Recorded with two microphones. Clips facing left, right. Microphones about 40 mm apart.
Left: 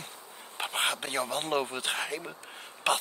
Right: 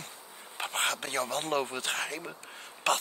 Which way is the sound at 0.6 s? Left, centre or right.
Centre.